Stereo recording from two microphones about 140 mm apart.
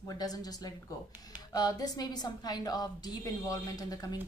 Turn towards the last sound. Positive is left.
turn(degrees=25)  # may be behind; listen again after turning